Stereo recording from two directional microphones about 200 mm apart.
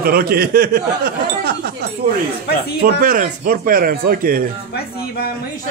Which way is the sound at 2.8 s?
45° right (ahead or behind).